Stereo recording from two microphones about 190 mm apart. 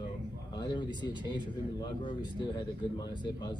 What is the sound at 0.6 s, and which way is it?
A man's voice, 20° left (ahead or behind).